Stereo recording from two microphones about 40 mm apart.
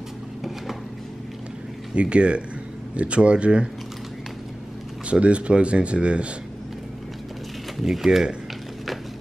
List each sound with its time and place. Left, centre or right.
2.0 s speech: right
5.1 s speech: right
7.8 s speech: centre